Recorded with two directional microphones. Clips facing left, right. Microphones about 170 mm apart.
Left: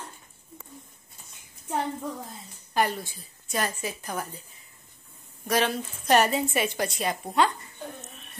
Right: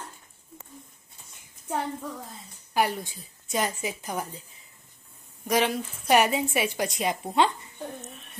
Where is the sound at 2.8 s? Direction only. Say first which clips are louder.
Even; 15° right (ahead or behind).